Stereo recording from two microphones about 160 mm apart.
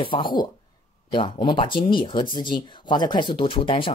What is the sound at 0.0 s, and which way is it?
Speech, 30° left (ahead or behind).